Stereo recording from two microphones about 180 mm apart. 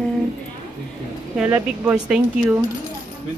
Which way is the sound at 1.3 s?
10° right (ahead or behind).